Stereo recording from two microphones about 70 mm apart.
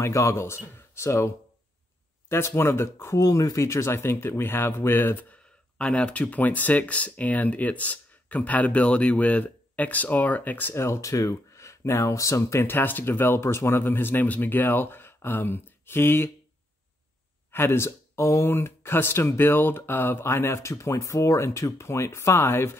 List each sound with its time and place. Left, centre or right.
0.0 s a man's voice: left
3.2 s speech: left
10.7 s speech: left
17.5 s speech: left